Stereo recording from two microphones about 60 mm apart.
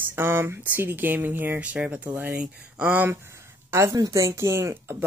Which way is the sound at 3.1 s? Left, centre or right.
Right.